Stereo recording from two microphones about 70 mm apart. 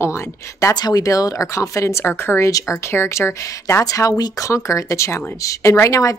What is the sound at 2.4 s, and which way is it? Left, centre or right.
Speech, left.